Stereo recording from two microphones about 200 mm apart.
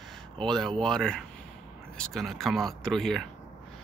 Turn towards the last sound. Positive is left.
turn(degrees=0)  # may be behind; listen again after turning